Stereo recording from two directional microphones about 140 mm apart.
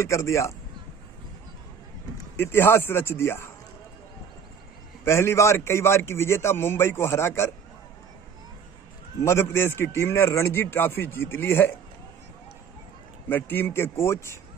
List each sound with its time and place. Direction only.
0.0 s a man's voice: 20° left (ahead or behind)
2.3 s a man's voice: 15° left (ahead or behind)
5.0 s a man's voice: 20° left (ahead or behind)
9.2 s a man's voice: 20° left (ahead or behind)
13.3 s a man's voice: 15° left (ahead or behind)